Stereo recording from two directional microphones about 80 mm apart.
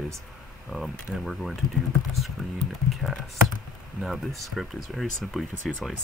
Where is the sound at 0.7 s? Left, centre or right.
Centre.